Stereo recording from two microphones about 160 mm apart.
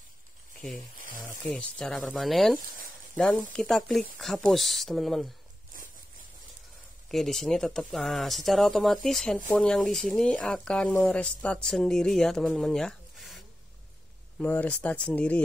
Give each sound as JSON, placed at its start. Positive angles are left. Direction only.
{"t": 0.6, "sound": "speech", "side_deg": 0}
{"t": 0.9, "sound": "snake", "side_deg": -60}
{"t": 1.2, "sound": "speech", "side_deg": 10}
{"t": 7.1, "sound": "speech", "side_deg": 0}
{"t": 14.4, "sound": "speech", "side_deg": 10}